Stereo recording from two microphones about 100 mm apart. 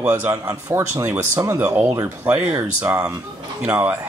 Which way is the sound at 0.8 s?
25° right (ahead or behind).